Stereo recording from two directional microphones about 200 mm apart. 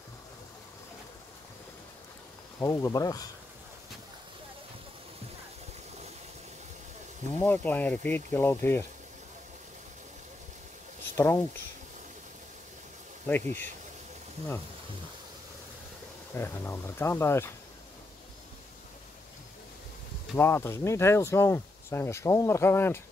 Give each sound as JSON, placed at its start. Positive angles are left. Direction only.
{"t": 2.6, "sound": "speech", "side_deg": 15}
{"t": 7.4, "sound": "speech", "side_deg": 10}
{"t": 11.1, "sound": "speech", "side_deg": 15}
{"t": 13.3, "sound": "speech", "side_deg": 10}
{"t": 16.3, "sound": "speech", "side_deg": 10}
{"t": 20.3, "sound": "speech", "side_deg": 10}